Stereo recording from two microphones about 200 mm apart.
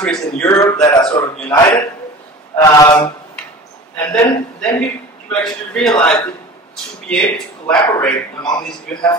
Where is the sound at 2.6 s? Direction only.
20° left (ahead or behind).